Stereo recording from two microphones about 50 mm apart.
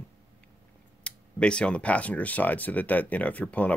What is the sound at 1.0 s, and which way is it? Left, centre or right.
Speech, left.